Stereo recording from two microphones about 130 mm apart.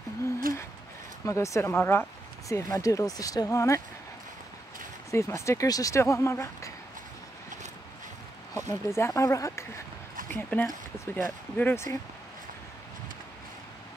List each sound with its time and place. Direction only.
0.5 s a sound: 90° right
1.2 s speech: 20° left (ahead or behind)
5.1 s speech: 20° left (ahead or behind)
8.5 s speech: 20° left (ahead or behind)